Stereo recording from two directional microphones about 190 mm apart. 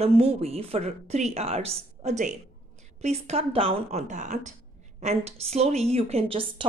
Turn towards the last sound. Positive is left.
turn(degrees=-30)  # may be behind; listen again after turning